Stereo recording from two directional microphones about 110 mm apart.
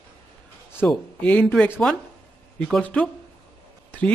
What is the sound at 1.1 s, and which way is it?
A man's voice, 15° left (ahead or behind).